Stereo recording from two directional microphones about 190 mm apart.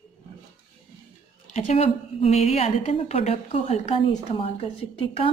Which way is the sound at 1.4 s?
35° left (ahead or behind).